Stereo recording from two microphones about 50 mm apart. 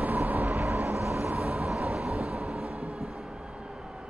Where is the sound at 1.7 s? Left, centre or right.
Centre.